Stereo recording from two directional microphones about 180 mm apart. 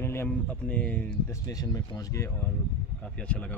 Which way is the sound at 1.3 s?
20° left (ahead or behind).